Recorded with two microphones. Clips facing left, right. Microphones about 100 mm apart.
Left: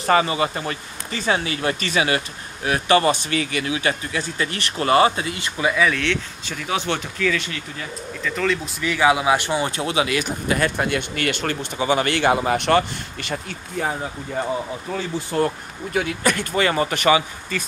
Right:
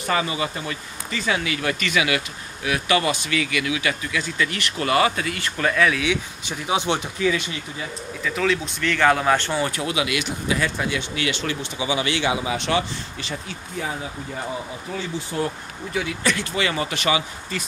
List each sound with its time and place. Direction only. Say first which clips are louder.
0.0 s speech: left 5 dB; 40° left (ahead or behind); by 5.5 s 25° left (ahead or behind)
5.6 s speech: left 1 dB; 5° left (ahead or behind)
6.4 s speech: right 3 dB; 20° right (ahead or behind)
8.2 s speech: even; 5° right (ahead or behind); by 17.2 s 45° left (ahead or behind)